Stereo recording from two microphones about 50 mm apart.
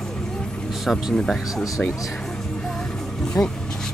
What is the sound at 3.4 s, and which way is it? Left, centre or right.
Speech, left.